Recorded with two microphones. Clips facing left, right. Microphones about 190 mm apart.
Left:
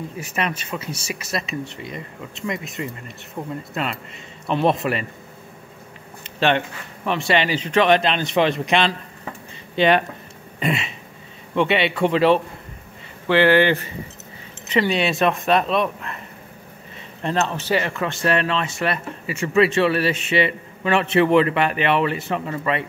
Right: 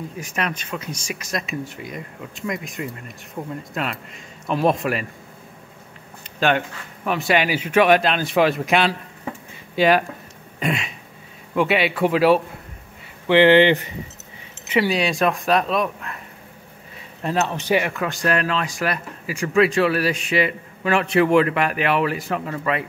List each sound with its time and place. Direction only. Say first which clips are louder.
0.2 s speech: left 1 dB; 5° left (ahead or behind)
7.1 s speech: even; 5° right (ahead or behind)
10.6 s throat clearing: left 1 dB; centre (ahead or behind)
11.5 s speech: even; 5° right (ahead or behind)
13.3 s a man's voice: right 2 dB; 20° right (ahead or behind)
14.7 s speech: even; 5° right (ahead or behind)
17.2 s a man's voice: even; 10° right (ahead or behind)
17.9 s speech: left 1 dB; centre (ahead or behind)